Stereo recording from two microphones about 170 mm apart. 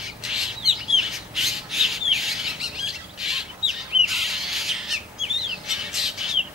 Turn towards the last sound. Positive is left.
turn(degrees=-5)  # may be behind; listen again after turning